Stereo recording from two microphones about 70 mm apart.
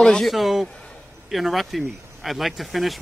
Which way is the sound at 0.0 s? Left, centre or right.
Centre.